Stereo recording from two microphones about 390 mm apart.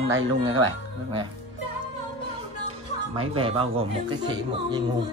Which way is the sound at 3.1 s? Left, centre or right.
Centre.